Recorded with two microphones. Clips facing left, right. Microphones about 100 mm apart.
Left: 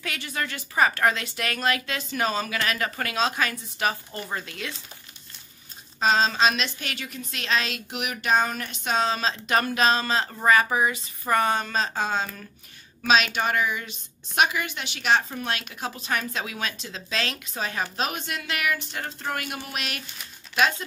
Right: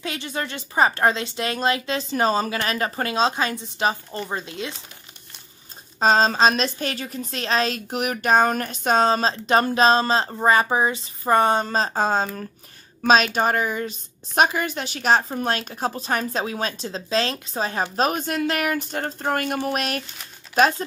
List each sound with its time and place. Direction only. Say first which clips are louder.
0.0 s a woman's voice: right 3 dB; 25° right (ahead or behind)
5.9 s a woman's voice: right 4 dB; 40° right (ahead or behind)